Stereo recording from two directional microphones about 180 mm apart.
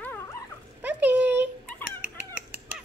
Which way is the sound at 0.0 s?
10° left (ahead or behind).